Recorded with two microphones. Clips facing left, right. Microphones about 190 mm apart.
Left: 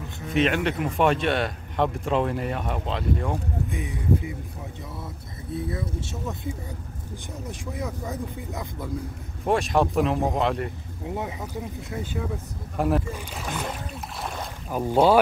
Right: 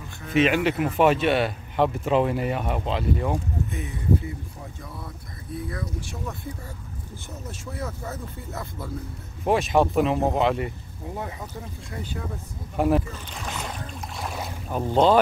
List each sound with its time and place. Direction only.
0.3 s speech: 5° right (ahead or behind)
3.7 s speech: 15° left (ahead or behind)
5.5 s speech: 25° left (ahead or behind)
9.4 s speech: centre (ahead or behind)
11.1 s speech: 15° left (ahead or behind)
12.7 s speech: centre (ahead or behind)
14.2 s boat: 5° right (ahead or behind)
14.7 s speech: 10° left (ahead or behind)